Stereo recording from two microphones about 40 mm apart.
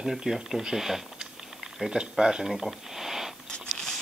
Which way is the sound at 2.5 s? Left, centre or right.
Centre.